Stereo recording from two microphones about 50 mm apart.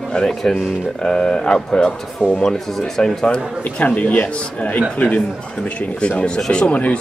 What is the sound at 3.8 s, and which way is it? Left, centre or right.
Speech, left.